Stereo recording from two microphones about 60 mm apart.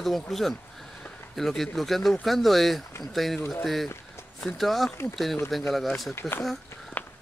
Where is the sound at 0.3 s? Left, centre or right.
Centre.